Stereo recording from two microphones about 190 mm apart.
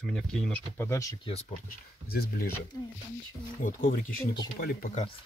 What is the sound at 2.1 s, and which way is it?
Speech, 55° left (ahead or behind).